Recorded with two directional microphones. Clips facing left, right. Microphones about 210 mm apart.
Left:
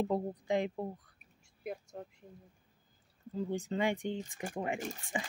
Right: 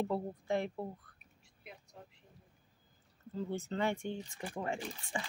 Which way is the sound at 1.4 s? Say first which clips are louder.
Left 13 dB; 45° left (ahead or behind).